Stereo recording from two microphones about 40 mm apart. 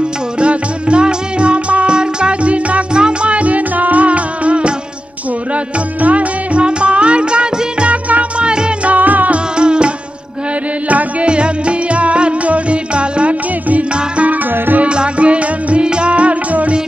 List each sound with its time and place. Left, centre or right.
0.4 s music: right
8.5 s music: right
8.9 s music: right
9.6 s music: right
10.9 s music: right
11.2 s music: right